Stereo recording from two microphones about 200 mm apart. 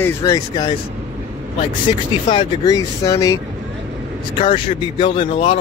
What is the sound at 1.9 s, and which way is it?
Speech, 25° left (ahead or behind).